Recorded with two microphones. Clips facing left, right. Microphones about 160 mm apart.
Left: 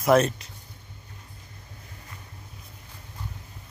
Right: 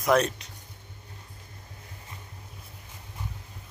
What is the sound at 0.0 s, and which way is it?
Speech, centre (ahead or behind).